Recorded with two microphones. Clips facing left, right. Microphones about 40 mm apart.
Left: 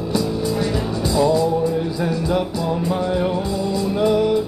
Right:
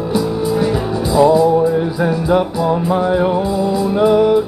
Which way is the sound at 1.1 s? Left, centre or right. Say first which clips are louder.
Right 7 dB; centre.